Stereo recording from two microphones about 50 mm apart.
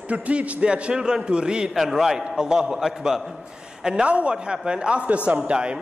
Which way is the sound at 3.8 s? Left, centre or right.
Centre.